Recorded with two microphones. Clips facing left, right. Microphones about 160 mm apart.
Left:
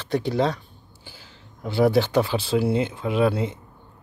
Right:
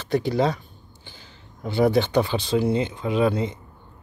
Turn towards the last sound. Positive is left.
turn(degrees=5)  # may be behind; listen again after turning